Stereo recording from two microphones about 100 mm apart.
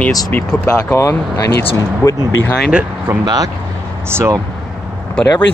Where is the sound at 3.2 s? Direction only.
40° right (ahead or behind).